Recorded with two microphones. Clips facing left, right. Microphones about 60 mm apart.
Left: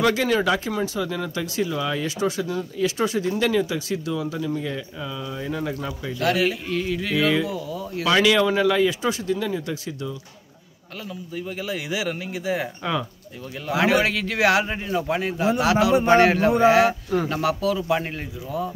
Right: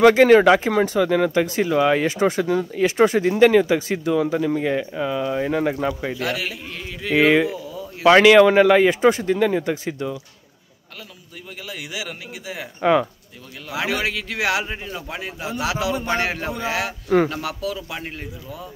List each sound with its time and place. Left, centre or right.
0.0 s speech: right
1.3 s speech: right
1.7 s speech: right
2.0 s speech: right
6.1 s speech: centre
8.0 s speech: right
11.3 s a man's voice: centre
13.7 s a man's voice: centre